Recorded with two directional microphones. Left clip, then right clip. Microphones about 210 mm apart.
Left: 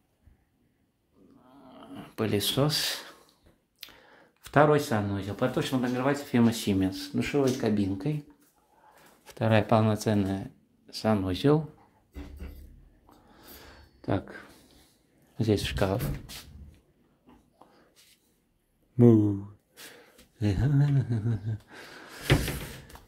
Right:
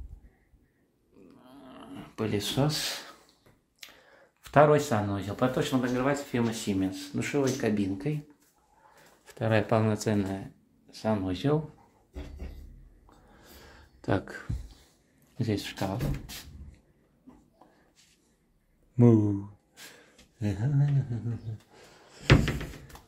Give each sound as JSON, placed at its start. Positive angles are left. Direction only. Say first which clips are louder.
{"t": 1.6, "sound": "dog", "louder": "right 1 dB", "side_deg": -10}
{"t": 1.9, "sound": "a sound", "louder": "left 3 dB", "side_deg": 10}
{"t": 2.1, "sound": "speech", "louder": "left 3 dB", "side_deg": 25}
{"t": 9.2, "sound": "speech", "louder": "left 2 dB", "side_deg": 25}
{"t": 10.9, "sound": "speech", "louder": "left 2 dB", "side_deg": 30}
{"t": 13.3, "sound": "a sound", "louder": "left 2 dB", "side_deg": 15}
{"t": 14.0, "sound": "speech", "louder": "right 1 dB", "side_deg": 5}
{"t": 15.3, "sound": "speech", "louder": "left 5 dB", "side_deg": 30}
{"t": 18.9, "sound": "speech", "louder": "left 2 dB", "side_deg": 5}
{"t": 20.0, "sound": "speech", "louder": "left 5 dB", "side_deg": 20}
{"t": 21.7, "sound": "a sound", "louder": "left 8 dB", "side_deg": 30}